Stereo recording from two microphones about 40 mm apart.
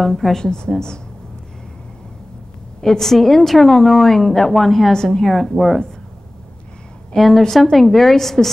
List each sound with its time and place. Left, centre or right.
0.0 s a woman's voice: centre
2.8 s a woman's voice: centre
4.9 s a woman's voice: centre
5.2 s speech: centre
7.2 s a woman's voice: centre